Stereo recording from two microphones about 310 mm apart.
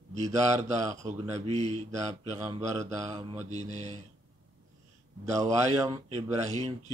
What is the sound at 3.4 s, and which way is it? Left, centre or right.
Speech, right.